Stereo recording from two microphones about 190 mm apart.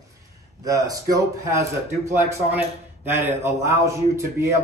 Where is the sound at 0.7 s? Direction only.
15° right (ahead or behind).